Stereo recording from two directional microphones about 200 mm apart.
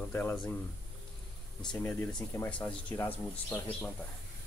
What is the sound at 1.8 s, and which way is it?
Speech, 10° left (ahead or behind).